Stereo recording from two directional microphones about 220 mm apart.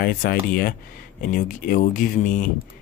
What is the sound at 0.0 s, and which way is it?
Speech, 40° left (ahead or behind).